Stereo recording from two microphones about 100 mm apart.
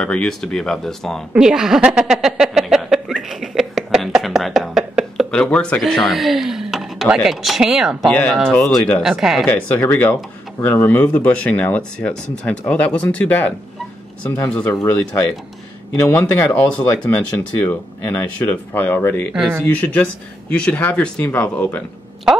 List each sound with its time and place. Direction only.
0.0 s speech: 10° left (ahead or behind)
1.3 s a woman's voice: 5° right (ahead or behind)
5.3 s speech: 10° left (ahead or behind)
8.1 s speech: 5° left (ahead or behind)
9.2 s speech: 5° right (ahead or behind)
9.5 s speech: 20° left (ahead or behind)